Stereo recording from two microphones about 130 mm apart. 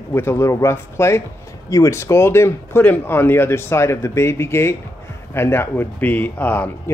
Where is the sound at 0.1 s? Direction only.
20° left (ahead or behind).